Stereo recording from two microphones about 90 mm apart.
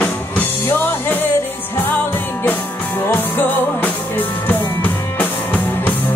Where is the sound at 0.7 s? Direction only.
25° left (ahead or behind).